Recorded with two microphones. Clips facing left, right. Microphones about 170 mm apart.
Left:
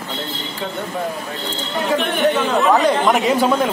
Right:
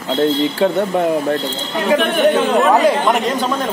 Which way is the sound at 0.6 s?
80° right.